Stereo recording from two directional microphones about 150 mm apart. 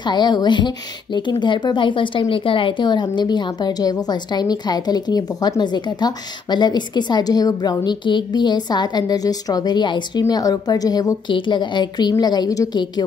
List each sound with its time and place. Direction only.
0.0 s a woman's voice: 30° left (ahead or behind)